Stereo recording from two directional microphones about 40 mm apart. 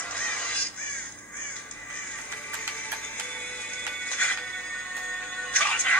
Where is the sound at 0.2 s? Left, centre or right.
Left.